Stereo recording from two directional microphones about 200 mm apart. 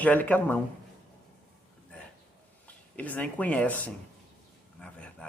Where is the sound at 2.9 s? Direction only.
5° left (ahead or behind).